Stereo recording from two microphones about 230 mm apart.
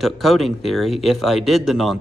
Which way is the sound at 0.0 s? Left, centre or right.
Centre.